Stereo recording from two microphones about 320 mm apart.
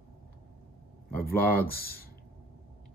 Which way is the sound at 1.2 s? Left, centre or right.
Left.